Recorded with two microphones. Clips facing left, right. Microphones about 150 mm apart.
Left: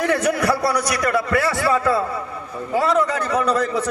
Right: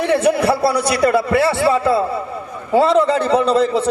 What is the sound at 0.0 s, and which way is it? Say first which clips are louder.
A man's voice: right 4 dB; 25° right (ahead or behind).